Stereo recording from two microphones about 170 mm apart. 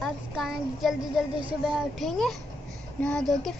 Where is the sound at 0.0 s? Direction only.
Centre (ahead or behind).